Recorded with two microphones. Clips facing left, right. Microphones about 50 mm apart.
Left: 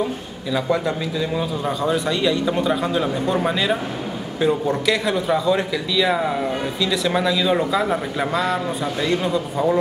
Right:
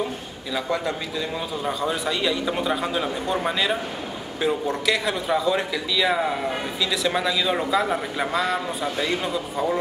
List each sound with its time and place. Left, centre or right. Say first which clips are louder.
0.5 s speech: left 4 dB; centre